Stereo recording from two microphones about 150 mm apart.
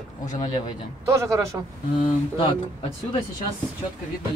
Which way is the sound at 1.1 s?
20° right (ahead or behind).